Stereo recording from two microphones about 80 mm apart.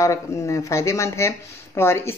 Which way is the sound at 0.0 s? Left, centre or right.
Left.